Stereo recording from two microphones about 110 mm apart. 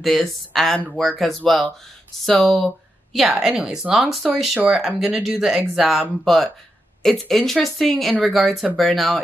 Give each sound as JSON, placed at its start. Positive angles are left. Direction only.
{"t": 0.0, "sound": "speech", "side_deg": 0}